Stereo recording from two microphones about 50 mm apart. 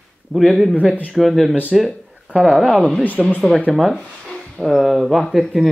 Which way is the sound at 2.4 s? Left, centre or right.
Centre.